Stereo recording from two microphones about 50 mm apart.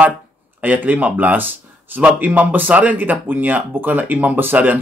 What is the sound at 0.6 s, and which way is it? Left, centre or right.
Speech, right.